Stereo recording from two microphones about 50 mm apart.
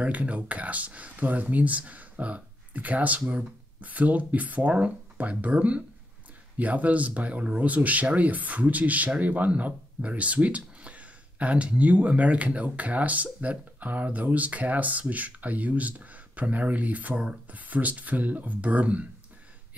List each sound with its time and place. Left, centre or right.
0.0 s speech: right
17.2 s speech: right
17.6 s speech: right